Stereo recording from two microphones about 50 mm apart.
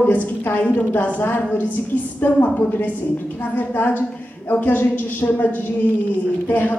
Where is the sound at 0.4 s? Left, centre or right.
Left.